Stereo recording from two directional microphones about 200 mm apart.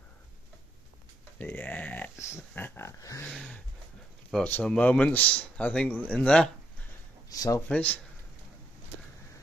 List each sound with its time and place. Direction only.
1.4 s speech: 5° left (ahead or behind)
3.3 s speech: centre (ahead or behind)
7.2 s speech: 15° left (ahead or behind)
7.6 s speech: 5° left (ahead or behind)